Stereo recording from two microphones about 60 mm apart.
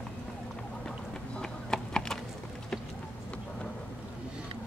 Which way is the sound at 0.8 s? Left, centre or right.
Centre.